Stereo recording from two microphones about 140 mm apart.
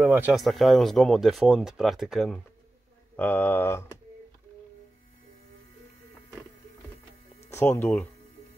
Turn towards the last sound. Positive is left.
turn(degrees=15)  # may be behind; listen again after turning